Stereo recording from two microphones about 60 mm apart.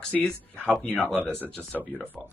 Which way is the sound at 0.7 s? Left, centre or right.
Left.